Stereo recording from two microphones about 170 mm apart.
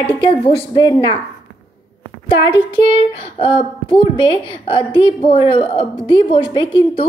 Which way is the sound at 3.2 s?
35° left (ahead or behind).